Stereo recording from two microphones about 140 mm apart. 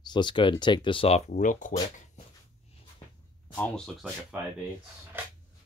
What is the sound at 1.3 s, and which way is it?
Speech, 65° left (ahead or behind).